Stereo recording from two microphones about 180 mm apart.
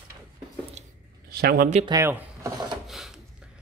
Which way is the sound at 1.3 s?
60° right (ahead or behind).